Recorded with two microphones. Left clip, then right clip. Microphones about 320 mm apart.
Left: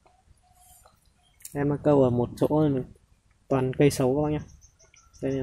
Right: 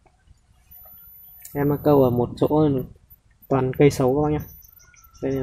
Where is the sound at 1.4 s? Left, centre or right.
Centre.